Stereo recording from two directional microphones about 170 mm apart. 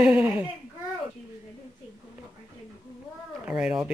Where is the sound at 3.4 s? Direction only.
5° right (ahead or behind).